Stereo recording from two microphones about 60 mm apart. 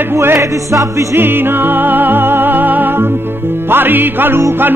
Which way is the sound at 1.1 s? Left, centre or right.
Right.